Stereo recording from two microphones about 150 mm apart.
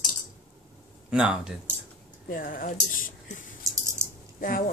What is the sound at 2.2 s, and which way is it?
Speech, 70° left (ahead or behind).